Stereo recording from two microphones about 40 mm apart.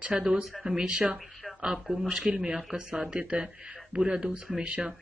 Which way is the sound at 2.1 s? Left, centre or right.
Centre.